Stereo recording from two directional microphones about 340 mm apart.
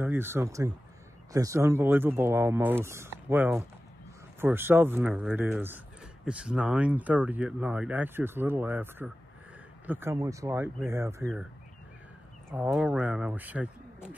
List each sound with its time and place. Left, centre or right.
0.0 s speech: centre
12.4 s speech: centre